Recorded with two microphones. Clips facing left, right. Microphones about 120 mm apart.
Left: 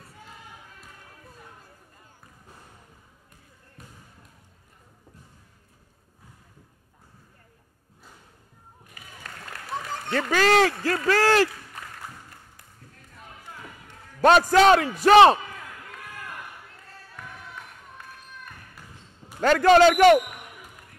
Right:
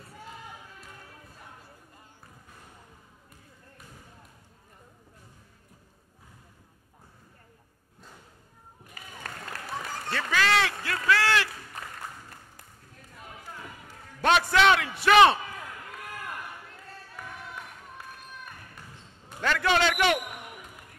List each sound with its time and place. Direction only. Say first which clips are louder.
10.1 s a man's voice: left 6 dB; 40° left (ahead or behind)
14.2 s a man's voice: left 6 dB; 40° left (ahead or behind)
19.4 s a man's voice: left 9 dB; 40° left (ahead or behind)